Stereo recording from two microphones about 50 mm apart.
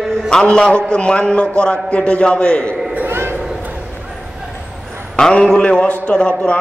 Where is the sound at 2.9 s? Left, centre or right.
Right.